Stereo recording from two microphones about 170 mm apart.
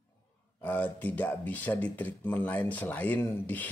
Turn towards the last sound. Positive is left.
turn(degrees=10)  # may be behind; listen again after turning